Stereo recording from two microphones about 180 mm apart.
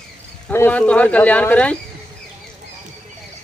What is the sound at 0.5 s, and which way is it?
Speech, 10° left (ahead or behind).